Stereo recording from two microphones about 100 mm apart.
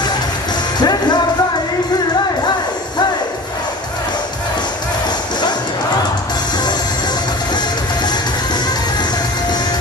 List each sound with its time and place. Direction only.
0.7 s music: 45° left (ahead or behind)
7.5 s music: 45° left (ahead or behind)